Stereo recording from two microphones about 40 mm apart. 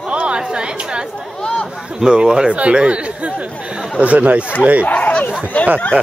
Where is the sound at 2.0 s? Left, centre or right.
Centre; by 4.5 s right.